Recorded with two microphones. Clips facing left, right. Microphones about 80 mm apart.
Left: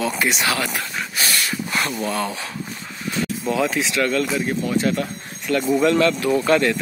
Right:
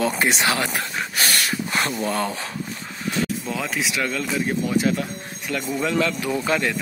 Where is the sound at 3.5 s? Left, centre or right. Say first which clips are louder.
Left 5 dB; centre.